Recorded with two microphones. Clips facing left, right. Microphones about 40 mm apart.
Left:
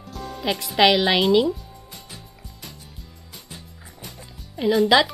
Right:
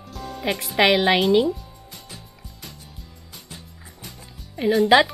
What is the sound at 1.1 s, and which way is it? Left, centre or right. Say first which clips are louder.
Speech: even; centre.